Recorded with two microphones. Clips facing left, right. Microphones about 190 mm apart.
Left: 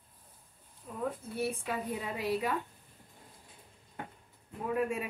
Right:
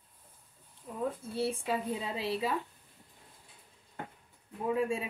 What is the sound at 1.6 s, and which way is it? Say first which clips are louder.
Speech: right 2 dB; 25° right (ahead or behind).